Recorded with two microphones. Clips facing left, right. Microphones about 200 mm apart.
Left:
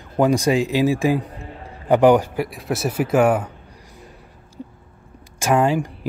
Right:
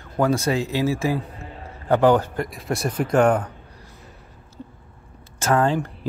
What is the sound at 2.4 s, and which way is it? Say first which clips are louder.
Speech: left 2 dB; centre (ahead or behind).